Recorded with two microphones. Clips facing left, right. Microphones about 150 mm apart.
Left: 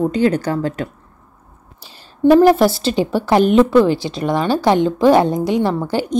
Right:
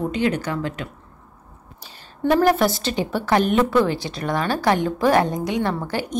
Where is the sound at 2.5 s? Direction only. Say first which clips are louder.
Left 6 dB; 30° left (ahead or behind).